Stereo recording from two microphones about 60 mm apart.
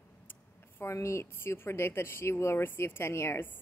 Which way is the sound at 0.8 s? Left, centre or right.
Left.